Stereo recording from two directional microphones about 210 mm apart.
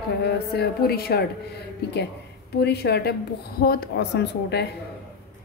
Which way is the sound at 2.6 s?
50° left (ahead or behind).